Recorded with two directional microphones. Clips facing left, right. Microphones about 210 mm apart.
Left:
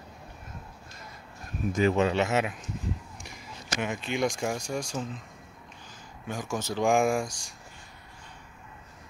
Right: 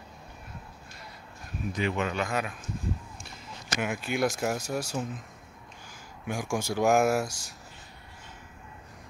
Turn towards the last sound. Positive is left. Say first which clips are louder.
# right 1 dB
turn(degrees=-5)  # may be behind; listen again after turning